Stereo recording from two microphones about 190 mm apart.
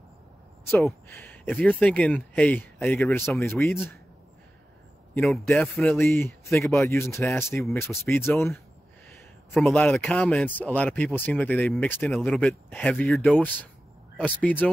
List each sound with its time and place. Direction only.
1.0 s a sound: 10° left (ahead or behind)
1.5 s speech: 5° left (ahead or behind)
5.1 s speech: centre (ahead or behind)